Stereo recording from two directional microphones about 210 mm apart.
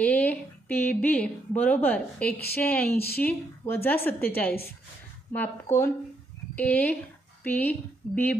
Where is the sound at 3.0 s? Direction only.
45° left (ahead or behind).